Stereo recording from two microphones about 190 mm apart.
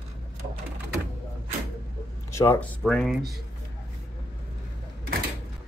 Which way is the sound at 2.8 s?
Centre (ahead or behind).